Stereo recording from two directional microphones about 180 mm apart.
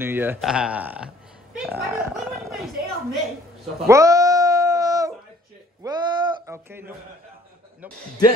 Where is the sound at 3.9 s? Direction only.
20° right (ahead or behind).